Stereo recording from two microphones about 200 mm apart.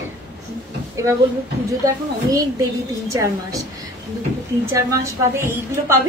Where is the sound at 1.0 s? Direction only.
15° right (ahead or behind).